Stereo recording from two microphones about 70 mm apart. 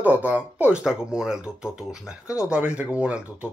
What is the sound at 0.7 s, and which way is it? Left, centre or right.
Speech, centre.